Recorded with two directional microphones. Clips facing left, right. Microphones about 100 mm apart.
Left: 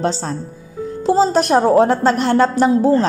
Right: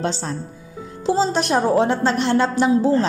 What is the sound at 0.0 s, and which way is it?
A woman's voice, 35° left (ahead or behind).